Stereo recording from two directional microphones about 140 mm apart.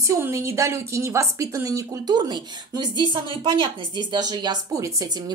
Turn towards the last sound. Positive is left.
turn(degrees=-25)  # may be behind; listen again after turning